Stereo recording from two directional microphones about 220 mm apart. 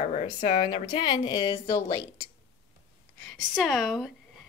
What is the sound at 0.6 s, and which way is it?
Speech, 20° left (ahead or behind).